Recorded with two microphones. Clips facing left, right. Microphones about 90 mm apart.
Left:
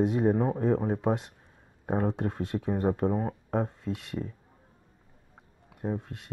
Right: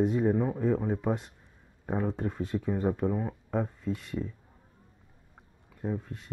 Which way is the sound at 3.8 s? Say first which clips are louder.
Right 1 dB; 70° left (ahead or behind).